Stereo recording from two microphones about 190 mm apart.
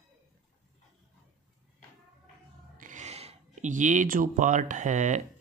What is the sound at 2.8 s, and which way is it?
Speech, 40° right (ahead or behind).